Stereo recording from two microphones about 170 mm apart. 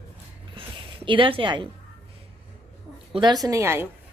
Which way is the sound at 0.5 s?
30° right (ahead or behind).